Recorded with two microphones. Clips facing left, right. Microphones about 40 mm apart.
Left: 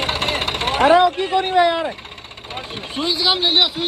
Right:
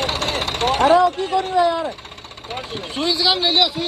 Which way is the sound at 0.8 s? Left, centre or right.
Left.